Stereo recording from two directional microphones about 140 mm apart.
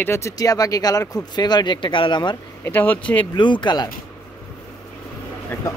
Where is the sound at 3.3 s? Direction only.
35° left (ahead or behind).